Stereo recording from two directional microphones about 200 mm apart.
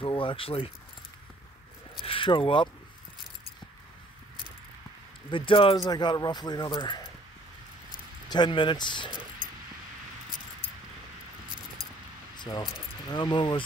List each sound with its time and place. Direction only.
0.0 s speech: 25° left (ahead or behind)
2.0 s keys jangling: 25° left (ahead or behind)
5.3 s speech: 25° left (ahead or behind)
8.3 s speech: 25° left (ahead or behind)
12.4 s speech: 20° left (ahead or behind)